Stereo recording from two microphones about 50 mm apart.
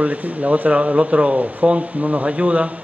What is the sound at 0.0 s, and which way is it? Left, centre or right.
A woman's voice, right.